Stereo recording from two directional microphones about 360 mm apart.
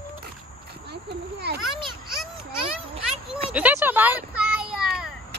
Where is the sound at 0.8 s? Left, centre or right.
Right.